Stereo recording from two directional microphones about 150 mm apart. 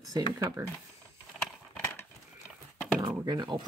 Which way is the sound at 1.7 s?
15° left (ahead or behind).